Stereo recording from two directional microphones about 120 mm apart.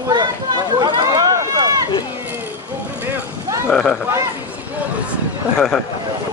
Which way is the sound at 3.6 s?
5° left (ahead or behind).